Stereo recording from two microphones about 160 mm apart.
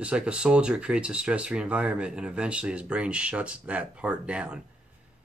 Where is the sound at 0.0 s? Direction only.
5° right (ahead or behind).